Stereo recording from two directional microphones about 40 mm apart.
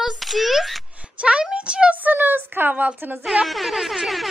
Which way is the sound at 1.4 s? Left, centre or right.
Right.